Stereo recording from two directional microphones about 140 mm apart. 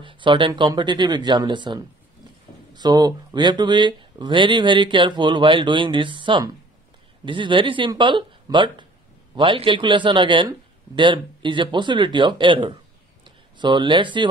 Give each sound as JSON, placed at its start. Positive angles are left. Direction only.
{"t": 0.0, "sound": "speech", "side_deg": -35}